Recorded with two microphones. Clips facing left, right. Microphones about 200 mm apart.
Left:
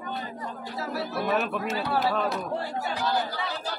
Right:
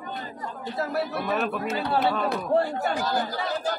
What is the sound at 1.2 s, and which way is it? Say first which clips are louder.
Speech: even; centre (ahead or behind).